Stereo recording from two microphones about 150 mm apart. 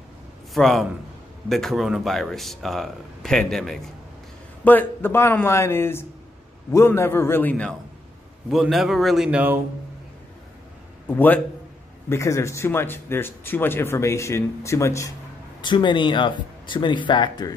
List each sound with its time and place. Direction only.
0.6 s speech: centre (ahead or behind)
4.6 s speech: 15° left (ahead or behind)
8.5 s speech: centre (ahead or behind)
11.1 s speech: 10° left (ahead or behind)
15.6 s speech: 30° left (ahead or behind)